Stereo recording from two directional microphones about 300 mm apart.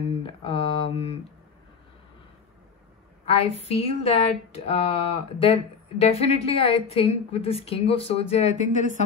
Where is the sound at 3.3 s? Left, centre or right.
Centre.